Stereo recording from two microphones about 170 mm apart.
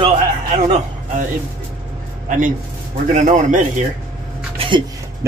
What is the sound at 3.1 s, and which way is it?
Speech, 45° right (ahead or behind).